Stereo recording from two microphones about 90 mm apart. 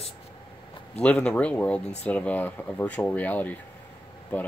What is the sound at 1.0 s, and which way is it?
Speech, 10° left (ahead or behind).